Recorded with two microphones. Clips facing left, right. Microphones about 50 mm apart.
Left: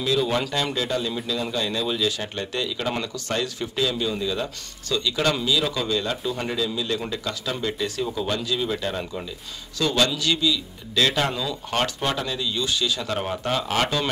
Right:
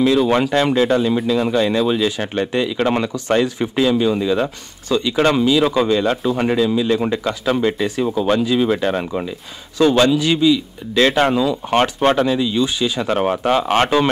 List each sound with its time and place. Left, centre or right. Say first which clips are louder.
0.0 s speech: right 8 dB; right
6.0 s speech: right 9 dB; right
6.4 s speech: right 10 dB; right
12.0 s speech: right 11 dB; right
12.3 s speech: right 9 dB; right